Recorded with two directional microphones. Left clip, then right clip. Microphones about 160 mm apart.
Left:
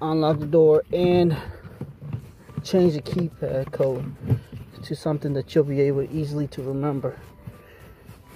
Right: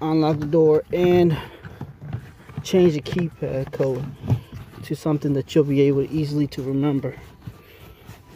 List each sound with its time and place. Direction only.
0.0 s speech: 30° right (ahead or behind)
2.6 s speech: 30° right (ahead or behind)
5.0 s speech: 35° right (ahead or behind)